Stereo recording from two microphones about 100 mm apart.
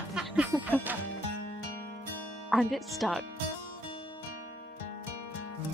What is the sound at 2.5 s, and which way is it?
Speech, centre (ahead or behind).